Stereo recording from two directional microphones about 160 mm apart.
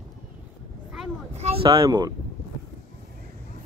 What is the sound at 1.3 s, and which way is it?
Speech, 40° right (ahead or behind).